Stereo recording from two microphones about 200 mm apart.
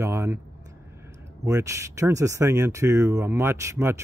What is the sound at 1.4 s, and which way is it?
Speech, 15° right (ahead or behind).